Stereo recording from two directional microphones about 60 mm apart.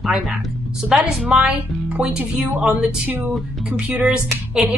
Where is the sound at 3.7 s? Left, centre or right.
Centre.